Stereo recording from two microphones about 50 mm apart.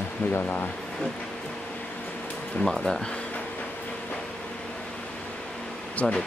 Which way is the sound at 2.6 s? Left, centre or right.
Centre.